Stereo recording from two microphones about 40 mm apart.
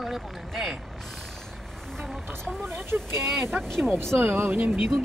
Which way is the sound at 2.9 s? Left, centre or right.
Right.